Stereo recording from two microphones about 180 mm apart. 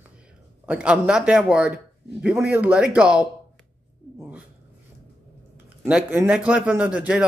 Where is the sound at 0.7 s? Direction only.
5° right (ahead or behind).